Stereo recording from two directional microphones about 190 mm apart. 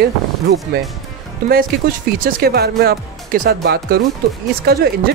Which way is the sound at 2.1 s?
50° right (ahead or behind).